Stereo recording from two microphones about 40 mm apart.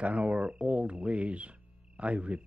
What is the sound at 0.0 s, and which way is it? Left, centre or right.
Speech, right.